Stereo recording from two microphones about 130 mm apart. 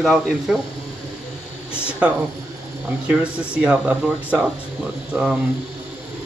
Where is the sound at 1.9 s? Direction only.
10° right (ahead or behind).